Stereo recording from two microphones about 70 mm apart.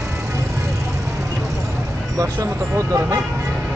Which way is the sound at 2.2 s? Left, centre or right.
Right.